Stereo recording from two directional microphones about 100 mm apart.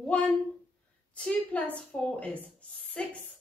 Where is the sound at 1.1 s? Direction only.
15° left (ahead or behind).